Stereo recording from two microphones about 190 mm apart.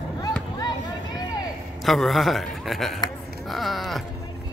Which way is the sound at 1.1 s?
20° left (ahead or behind).